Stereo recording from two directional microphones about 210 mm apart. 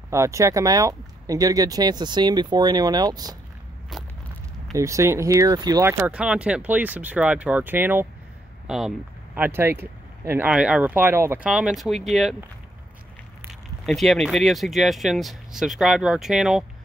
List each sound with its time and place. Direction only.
0.1 s speech: 15° right (ahead or behind)
3.9 s a sound: centre (ahead or behind)
4.7 s speech: 15° right (ahead or behind)
13.8 s speech: centre (ahead or behind)